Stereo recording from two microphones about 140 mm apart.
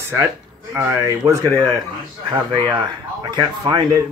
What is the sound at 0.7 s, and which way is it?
Speech, 15° right (ahead or behind).